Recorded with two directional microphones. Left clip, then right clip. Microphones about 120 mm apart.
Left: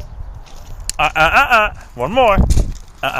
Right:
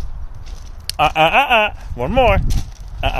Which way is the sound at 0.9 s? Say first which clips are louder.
Left 1 dB; 65° right (ahead or behind).